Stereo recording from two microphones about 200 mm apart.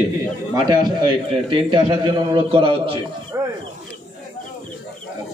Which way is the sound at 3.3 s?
10° right (ahead or behind).